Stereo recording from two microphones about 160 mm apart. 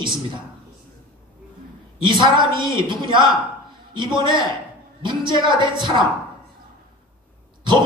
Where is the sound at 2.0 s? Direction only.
30° right (ahead or behind).